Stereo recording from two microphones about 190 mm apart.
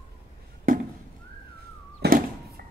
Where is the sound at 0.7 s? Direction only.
45° right (ahead or behind).